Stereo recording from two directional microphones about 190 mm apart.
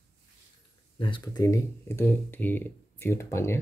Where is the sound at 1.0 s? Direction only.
25° left (ahead or behind).